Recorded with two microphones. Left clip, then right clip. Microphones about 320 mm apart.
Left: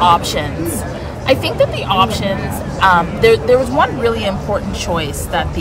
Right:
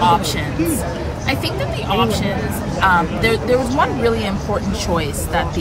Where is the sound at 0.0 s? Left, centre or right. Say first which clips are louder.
Left 3 dB; centre.